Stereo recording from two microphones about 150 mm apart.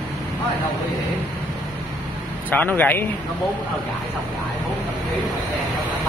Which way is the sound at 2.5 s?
10° left (ahead or behind).